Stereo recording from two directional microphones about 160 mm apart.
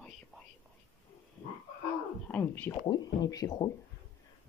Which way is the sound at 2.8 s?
25° left (ahead or behind).